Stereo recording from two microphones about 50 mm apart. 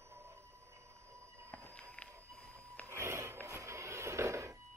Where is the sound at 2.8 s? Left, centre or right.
Right.